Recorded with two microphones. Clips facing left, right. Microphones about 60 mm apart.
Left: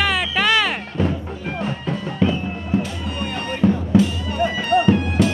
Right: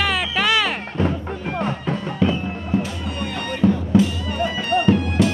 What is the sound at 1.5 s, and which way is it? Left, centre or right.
Music, right.